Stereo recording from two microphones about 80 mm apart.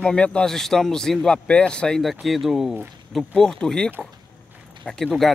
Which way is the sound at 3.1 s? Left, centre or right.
Centre.